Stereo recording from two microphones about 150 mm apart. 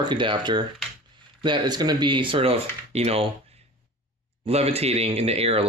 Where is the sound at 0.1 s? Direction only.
35° right (ahead or behind).